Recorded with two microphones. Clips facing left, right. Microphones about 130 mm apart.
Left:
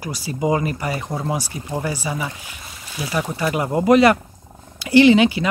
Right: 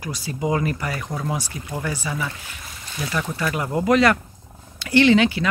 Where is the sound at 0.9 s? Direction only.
20° left (ahead or behind).